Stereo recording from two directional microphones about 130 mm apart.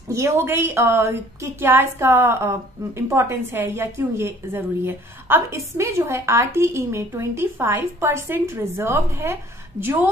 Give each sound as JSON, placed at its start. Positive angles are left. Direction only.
{"t": 0.1, "sound": "a woman's voice", "side_deg": -20}